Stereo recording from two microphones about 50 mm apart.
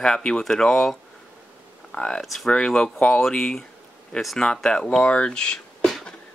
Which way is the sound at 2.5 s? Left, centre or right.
Centre.